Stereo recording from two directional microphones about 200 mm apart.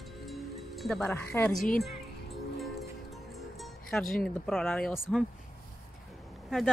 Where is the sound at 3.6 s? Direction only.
Centre (ahead or behind).